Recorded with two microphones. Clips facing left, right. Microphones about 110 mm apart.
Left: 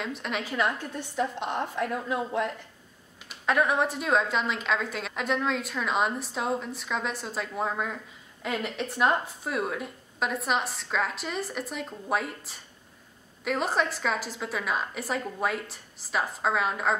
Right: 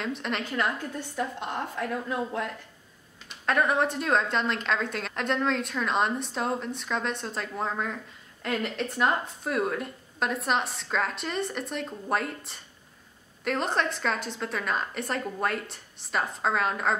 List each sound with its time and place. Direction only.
0.0 s a woman's voice: centre (ahead or behind)
0.9 s a woman's voice: 15° left (ahead or behind)